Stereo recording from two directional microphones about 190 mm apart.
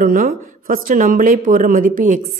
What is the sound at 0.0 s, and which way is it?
A woman's voice, 50° right (ahead or behind).